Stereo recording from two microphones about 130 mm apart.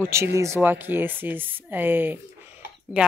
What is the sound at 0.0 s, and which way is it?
Speech, 20° right (ahead or behind).